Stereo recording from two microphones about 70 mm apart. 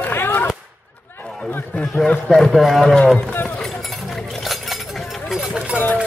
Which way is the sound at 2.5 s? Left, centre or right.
Centre.